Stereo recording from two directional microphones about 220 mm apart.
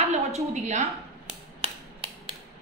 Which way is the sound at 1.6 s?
25° right (ahead or behind).